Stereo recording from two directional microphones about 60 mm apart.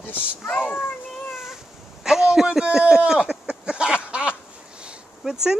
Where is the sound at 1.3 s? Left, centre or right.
Centre.